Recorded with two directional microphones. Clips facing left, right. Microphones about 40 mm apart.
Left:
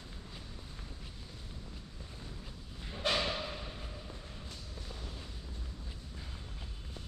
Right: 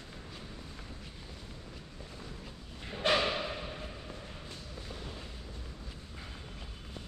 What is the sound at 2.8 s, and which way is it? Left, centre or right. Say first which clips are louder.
Bow-wow: right 4 dB; right.